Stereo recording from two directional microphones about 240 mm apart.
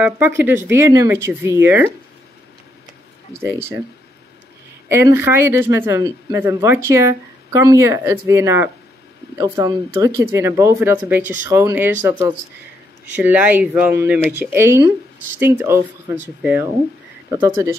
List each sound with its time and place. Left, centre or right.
0.0 s speech: centre
3.4 s speech: centre
4.8 s speech: centre
17.3 s speech: centre